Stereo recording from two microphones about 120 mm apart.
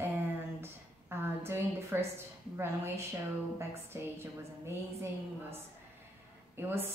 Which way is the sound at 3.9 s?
25° right (ahead or behind).